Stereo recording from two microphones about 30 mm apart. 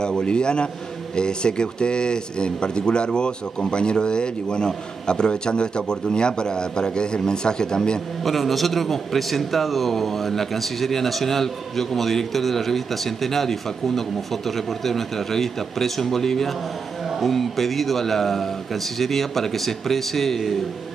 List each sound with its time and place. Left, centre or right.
0.2 s a man's voice: left
8.2 s a man's voice: centre